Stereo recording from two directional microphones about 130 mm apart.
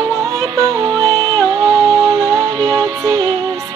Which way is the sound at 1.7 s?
25° right (ahead or behind).